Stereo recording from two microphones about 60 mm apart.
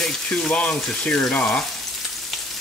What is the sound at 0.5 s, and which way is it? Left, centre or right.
Speech, left.